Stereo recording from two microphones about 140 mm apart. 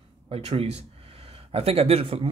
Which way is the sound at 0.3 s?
45° right (ahead or behind).